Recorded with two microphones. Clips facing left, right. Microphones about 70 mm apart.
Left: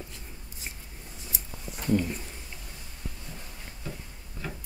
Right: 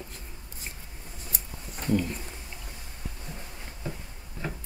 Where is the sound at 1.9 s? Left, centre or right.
Centre.